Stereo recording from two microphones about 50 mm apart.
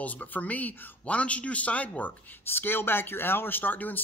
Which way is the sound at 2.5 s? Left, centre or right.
Left.